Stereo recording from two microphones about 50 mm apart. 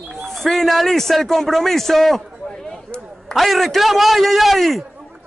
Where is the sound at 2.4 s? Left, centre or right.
Centre.